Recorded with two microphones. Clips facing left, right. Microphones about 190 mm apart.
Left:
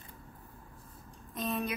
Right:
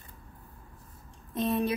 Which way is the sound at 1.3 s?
25° right (ahead or behind).